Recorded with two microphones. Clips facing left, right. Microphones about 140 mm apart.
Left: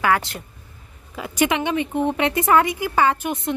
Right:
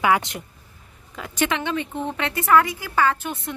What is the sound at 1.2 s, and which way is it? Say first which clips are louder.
Speech: left 3 dB; 15° left (ahead or behind).